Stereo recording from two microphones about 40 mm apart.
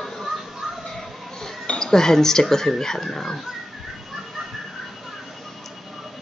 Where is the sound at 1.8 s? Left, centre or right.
Centre.